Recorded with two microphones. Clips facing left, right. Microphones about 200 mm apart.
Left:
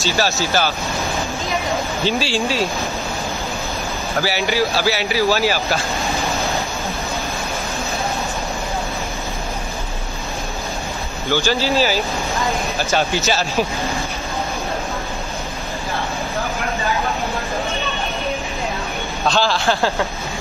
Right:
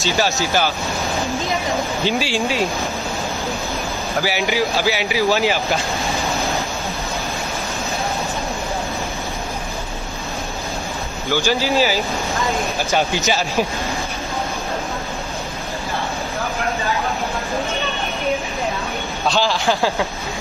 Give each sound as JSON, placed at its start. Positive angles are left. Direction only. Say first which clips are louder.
{"t": 0.0, "sound": "speech", "louder": "even", "side_deg": -15}
{"t": 2.0, "sound": "speech", "louder": "left 1 dB", "side_deg": -15}
{"t": 4.2, "sound": "speech", "louder": "left 1 dB", "side_deg": -15}
{"t": 6.1, "sound": "vehicle", "louder": "even", "side_deg": 0}
{"t": 11.3, "sound": "speech", "louder": "even", "side_deg": -15}
{"t": 19.2, "sound": "speech", "louder": "left 1 dB", "side_deg": -15}